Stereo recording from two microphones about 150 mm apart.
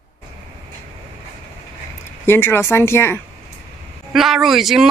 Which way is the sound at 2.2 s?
15° left (ahead or behind).